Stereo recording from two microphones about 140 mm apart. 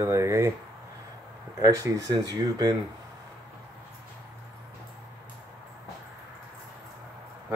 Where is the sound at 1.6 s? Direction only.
25° right (ahead or behind).